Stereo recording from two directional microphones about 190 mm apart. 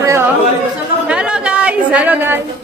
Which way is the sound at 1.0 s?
5° right (ahead or behind).